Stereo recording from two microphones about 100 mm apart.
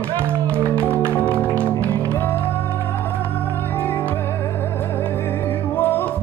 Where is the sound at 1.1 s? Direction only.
15° left (ahead or behind).